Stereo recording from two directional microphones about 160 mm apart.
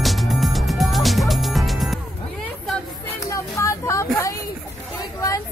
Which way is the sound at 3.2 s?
20° left (ahead or behind).